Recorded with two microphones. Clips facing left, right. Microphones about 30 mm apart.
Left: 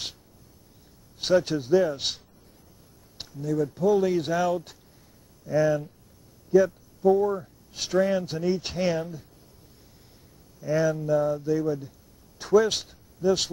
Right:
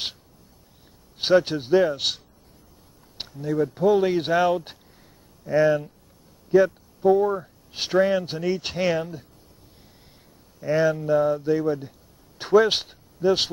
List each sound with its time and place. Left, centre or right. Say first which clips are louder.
1.1 s speech: right 3 dB; right
2.0 s speech: right 4 dB; centre
3.2 s speech: right 3 dB; right
8.3 s speech: right 1 dB; centre
10.6 s speech: right 3 dB; right